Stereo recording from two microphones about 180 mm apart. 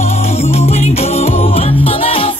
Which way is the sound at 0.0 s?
35° left (ahead or behind).